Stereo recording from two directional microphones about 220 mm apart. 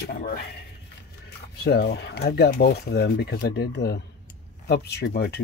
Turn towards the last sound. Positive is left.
turn(degrees=45)  # may be behind; listen again after turning